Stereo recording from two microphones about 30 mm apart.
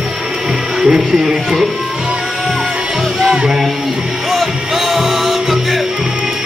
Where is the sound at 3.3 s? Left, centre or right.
Right.